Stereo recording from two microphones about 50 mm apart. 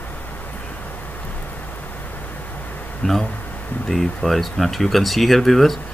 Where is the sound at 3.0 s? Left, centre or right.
Centre.